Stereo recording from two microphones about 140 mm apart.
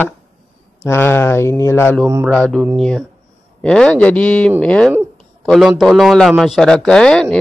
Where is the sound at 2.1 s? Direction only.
20° right (ahead or behind).